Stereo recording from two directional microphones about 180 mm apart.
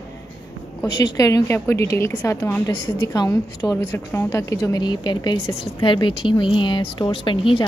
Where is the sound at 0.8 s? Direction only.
20° left (ahead or behind).